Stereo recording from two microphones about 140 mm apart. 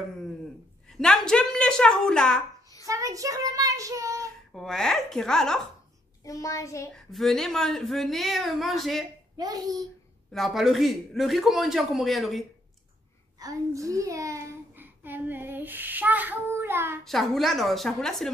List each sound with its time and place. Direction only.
0.9 s a man's voice: 5° left (ahead or behind)
2.9 s child singing: 25° right (ahead or behind)
4.6 s a man's voice: 5° left (ahead or behind)
6.2 s a child's voice: 25° left (ahead or behind)
6.9 s a man's voice: centre (ahead or behind)
9.4 s child singing: 25° right (ahead or behind)
10.3 s a man's voice: centre (ahead or behind)
13.4 s a child's voice: 25° right (ahead or behind)
17.0 s a man's voice: centre (ahead or behind)